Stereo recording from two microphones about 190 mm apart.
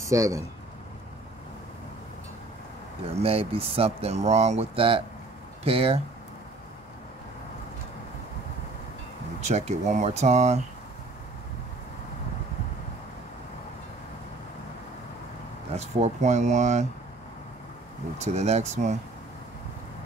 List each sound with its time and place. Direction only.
0.0 s speech: 15° right (ahead or behind)
3.2 s speech: 30° right (ahead or behind)
9.4 s speech: 35° right (ahead or behind)
15.7 s speech: 35° right (ahead or behind)
18.2 s speech: 35° right (ahead or behind)